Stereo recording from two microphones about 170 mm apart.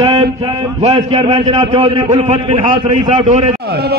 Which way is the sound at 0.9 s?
35° right (ahead or behind).